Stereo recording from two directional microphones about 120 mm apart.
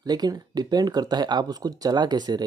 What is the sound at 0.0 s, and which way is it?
Speech, 35° right (ahead or behind).